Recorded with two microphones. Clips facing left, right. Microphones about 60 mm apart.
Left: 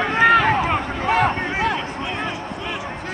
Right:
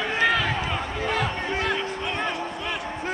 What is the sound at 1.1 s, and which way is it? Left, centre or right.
Speech, left.